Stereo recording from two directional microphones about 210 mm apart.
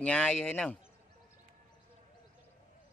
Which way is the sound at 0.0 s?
5° left (ahead or behind).